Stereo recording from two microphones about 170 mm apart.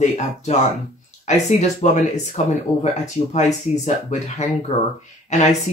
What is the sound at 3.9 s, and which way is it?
Speech, 40° left (ahead or behind).